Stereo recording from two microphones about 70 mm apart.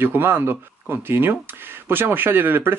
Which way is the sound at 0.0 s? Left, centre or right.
Right.